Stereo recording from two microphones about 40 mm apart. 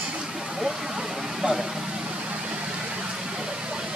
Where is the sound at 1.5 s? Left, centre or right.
Centre.